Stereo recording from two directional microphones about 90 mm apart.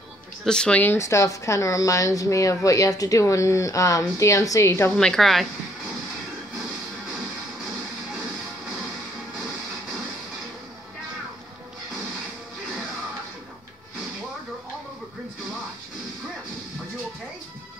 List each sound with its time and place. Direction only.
0.5 s speech: 10° left (ahead or behind)
0.8 s a woman's voice: 35° left (ahead or behind)
4.9 s a woman's voice: 5° left (ahead or behind)